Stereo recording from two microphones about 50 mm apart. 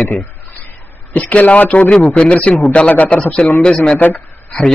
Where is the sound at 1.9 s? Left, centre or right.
Centre.